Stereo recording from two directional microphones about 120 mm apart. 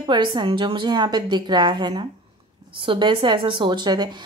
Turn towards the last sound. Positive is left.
turn(degrees=-35)  # may be behind; listen again after turning